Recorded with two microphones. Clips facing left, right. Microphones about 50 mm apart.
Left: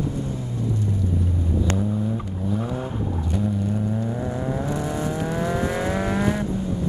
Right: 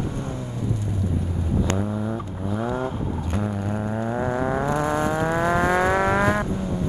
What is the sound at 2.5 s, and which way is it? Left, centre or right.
Vehicle, right.